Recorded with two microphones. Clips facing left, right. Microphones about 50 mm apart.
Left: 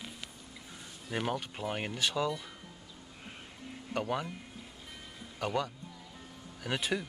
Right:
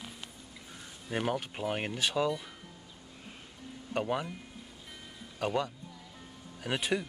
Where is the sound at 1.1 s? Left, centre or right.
Centre.